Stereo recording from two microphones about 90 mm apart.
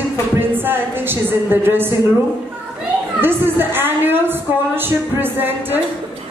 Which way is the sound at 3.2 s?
25° right (ahead or behind).